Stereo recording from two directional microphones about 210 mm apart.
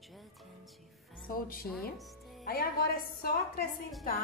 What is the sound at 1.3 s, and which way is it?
Speech, 45° left (ahead or behind).